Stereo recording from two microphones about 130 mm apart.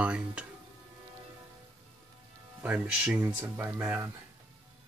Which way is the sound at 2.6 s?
10° right (ahead or behind).